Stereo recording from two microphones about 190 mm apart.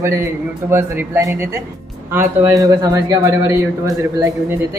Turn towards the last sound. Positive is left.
turn(degrees=-15)  # may be behind; listen again after turning